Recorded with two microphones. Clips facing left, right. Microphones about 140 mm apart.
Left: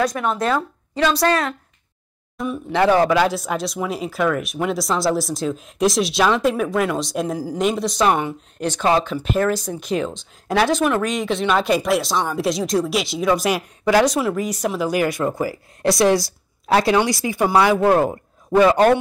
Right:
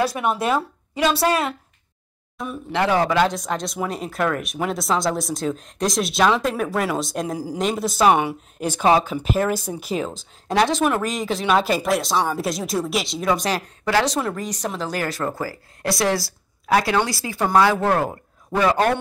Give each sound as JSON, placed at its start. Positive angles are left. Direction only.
{"t": 0.0, "sound": "speech", "side_deg": -5}
{"t": 13.5, "sound": "speech", "side_deg": 10}